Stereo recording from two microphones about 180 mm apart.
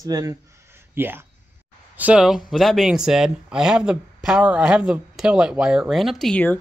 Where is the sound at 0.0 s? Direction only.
20° right (ahead or behind).